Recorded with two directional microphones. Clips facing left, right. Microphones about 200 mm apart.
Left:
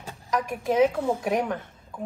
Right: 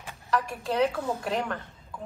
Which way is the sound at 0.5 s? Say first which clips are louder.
Left 7 dB; 15° left (ahead or behind).